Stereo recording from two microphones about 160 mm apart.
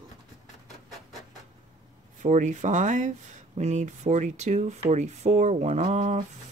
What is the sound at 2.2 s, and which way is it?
Speech, 50° right (ahead or behind).